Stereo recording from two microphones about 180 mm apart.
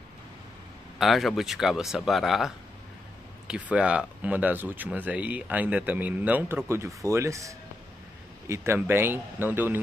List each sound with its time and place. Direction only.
0.9 s speech: centre (ahead or behind)